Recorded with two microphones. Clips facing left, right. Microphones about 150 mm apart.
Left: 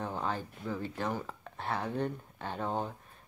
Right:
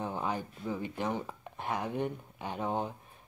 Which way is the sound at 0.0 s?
15° right (ahead or behind).